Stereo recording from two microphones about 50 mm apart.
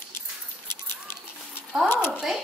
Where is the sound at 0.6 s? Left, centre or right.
Left.